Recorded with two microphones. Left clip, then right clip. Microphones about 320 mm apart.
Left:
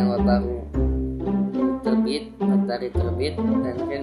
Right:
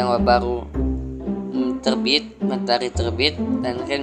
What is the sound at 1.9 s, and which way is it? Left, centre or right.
Speech, centre.